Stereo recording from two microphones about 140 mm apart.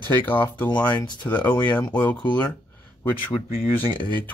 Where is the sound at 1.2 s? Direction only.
10° left (ahead or behind).